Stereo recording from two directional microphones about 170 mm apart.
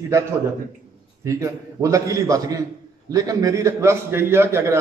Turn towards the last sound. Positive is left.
turn(degrees=-15)  # may be behind; listen again after turning